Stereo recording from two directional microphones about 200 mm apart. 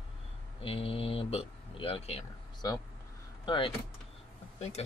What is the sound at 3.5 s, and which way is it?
Speech, 25° left (ahead or behind).